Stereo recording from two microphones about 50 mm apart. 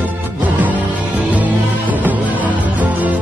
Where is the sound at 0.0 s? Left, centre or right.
Right.